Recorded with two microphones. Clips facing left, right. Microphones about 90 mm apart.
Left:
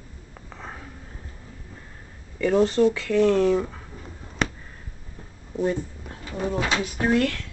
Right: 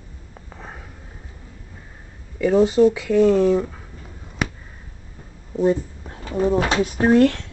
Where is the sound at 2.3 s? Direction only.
5° right (ahead or behind).